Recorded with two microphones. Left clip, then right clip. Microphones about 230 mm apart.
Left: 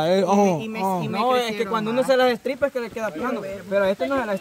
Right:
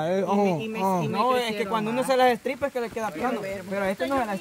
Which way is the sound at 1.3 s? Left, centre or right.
Centre.